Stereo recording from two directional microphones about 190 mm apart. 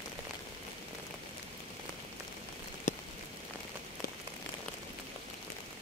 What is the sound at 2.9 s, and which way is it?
Rain on surface, 40° left (ahead or behind).